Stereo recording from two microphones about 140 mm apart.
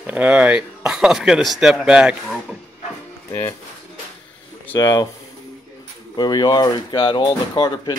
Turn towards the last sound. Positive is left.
turn(degrees=30)  # may be behind; listen again after turning